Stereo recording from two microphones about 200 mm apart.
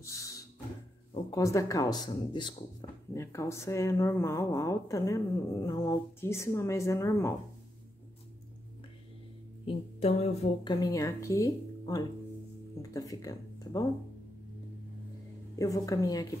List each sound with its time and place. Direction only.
0.0 s a sound: 15° left (ahead or behind)
1.1 s speech: 15° left (ahead or behind)
9.7 s speech: 30° left (ahead or behind)
10.7 s speech: 15° left (ahead or behind)
15.5 s speech: 15° left (ahead or behind)